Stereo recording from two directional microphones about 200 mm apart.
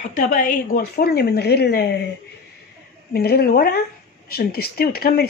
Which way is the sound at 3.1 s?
50° left (ahead or behind).